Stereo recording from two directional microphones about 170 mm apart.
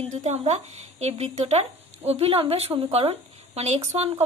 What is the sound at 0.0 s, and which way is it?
Speech, 40° right (ahead or behind).